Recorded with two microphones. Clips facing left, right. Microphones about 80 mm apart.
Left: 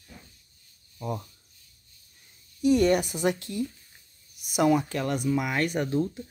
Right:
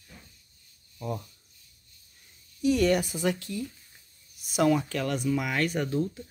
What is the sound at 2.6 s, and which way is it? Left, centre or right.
Speech, left.